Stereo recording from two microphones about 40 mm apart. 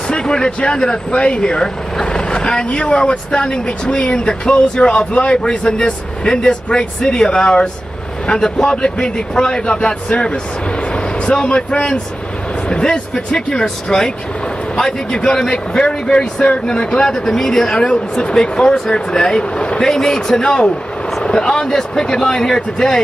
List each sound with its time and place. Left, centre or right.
0.1 s speech: left
17.2 s speech: centre
17.8 s speech: left